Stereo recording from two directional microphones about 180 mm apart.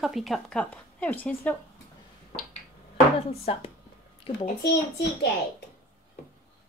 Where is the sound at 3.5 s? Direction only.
30° left (ahead or behind).